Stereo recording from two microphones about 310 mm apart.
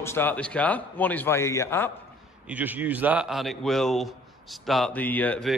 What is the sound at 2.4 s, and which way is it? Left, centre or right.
A man's voice, centre.